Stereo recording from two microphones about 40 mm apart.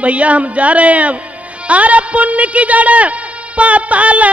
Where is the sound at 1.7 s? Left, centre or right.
Right.